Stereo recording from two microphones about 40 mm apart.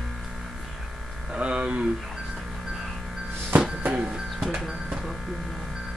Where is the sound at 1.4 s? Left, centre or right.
Right.